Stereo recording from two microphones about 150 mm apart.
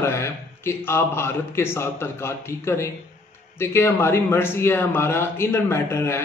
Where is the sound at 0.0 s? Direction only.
15° left (ahead or behind).